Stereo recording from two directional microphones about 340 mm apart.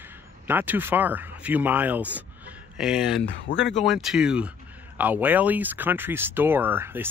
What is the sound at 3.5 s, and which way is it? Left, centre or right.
Speech, left.